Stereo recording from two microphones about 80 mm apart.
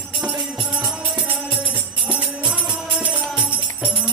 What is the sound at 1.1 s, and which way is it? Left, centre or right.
Music, centre.